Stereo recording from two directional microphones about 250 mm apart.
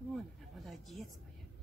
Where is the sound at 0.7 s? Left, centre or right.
Centre.